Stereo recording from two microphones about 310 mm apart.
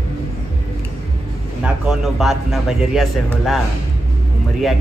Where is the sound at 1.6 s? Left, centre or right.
Centre.